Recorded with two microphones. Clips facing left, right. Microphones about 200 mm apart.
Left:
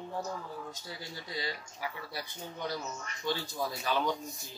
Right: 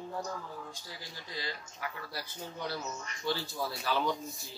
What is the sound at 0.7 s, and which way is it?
Speech, 20° left (ahead or behind).